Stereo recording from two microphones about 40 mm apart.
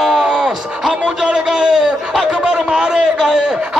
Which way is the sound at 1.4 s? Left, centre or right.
Centre.